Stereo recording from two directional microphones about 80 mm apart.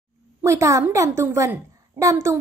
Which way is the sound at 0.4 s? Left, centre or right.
Right.